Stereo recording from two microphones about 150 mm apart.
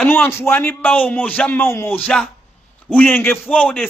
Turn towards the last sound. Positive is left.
turn(degrees=5)  # may be behind; listen again after turning